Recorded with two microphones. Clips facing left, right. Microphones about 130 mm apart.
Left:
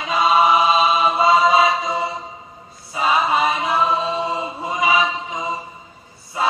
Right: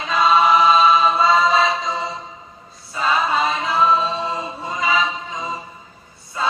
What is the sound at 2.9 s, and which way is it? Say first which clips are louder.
Chant: left 1 dB; 10° left (ahead or behind).